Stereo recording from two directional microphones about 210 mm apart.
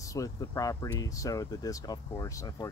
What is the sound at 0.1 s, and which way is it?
Speech, 15° left (ahead or behind).